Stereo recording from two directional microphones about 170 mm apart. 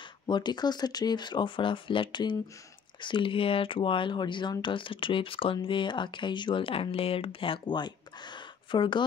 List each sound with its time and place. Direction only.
0.3 s speech: 25° left (ahead or behind)